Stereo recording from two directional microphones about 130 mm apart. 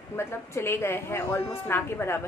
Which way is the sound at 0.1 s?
20° left (ahead or behind).